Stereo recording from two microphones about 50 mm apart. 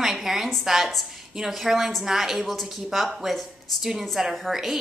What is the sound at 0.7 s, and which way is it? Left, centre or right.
A woman's voice, centre.